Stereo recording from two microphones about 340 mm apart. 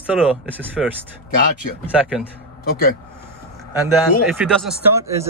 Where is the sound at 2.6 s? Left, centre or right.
Left.